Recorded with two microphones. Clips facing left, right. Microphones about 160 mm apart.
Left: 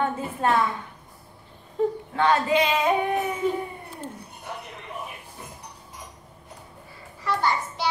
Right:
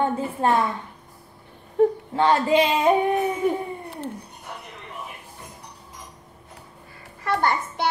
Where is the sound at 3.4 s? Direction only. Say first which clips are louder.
Right 2 dB; 60° right (ahead or behind).